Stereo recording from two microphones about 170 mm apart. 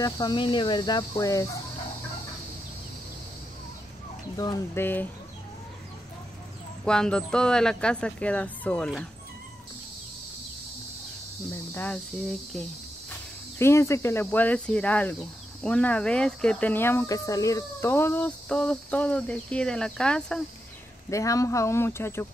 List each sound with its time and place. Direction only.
0.0 s speech: 25° left (ahead or behind)
4.4 s speech: 25° left (ahead or behind)
4.8 s speech: 10° left (ahead or behind)
6.8 s speech: 5° left (ahead or behind)
11.7 s speech: 10° left (ahead or behind)
13.6 s speech: 15° left (ahead or behind)
21.1 s speech: 20° left (ahead or behind)